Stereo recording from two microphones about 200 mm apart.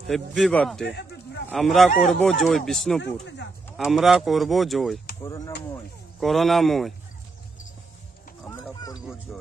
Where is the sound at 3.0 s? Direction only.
60° left (ahead or behind).